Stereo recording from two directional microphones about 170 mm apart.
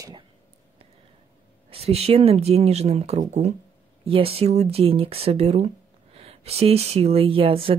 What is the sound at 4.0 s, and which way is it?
Speech, 35° right (ahead or behind).